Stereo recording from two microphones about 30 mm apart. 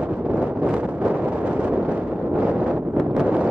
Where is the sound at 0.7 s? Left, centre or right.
Right.